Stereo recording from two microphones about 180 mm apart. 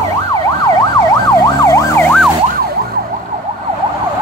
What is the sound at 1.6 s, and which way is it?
Emergency vehicle, 15° left (ahead or behind).